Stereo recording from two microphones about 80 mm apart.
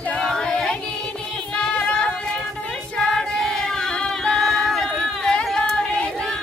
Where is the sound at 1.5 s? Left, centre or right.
Centre.